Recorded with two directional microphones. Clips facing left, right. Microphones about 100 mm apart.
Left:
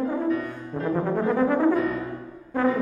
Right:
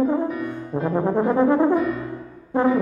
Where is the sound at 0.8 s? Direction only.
20° right (ahead or behind).